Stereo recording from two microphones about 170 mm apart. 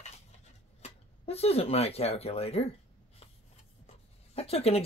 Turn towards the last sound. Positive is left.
turn(degrees=35)  # may be behind; listen again after turning